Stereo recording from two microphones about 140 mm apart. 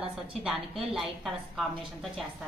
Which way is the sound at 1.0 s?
Centre (ahead or behind).